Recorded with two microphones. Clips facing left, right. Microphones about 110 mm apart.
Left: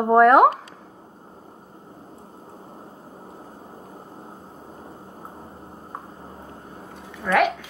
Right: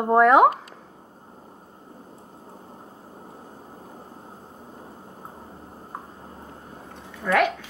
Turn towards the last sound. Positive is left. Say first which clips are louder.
# left 1 dB
turn(degrees=15)  # may be behind; listen again after turning